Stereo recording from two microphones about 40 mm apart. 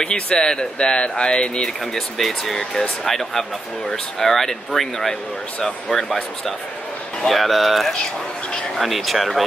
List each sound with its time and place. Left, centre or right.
0.0 s speech: left
2.0 s speech: centre